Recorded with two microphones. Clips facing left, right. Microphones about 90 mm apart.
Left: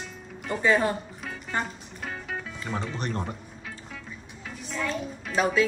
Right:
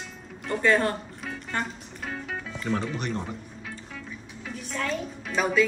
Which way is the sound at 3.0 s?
40° left (ahead or behind).